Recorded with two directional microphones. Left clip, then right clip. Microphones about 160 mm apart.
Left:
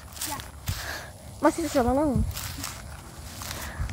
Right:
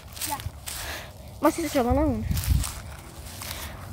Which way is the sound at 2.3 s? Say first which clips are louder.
Right 2 dB; 40° left (ahead or behind).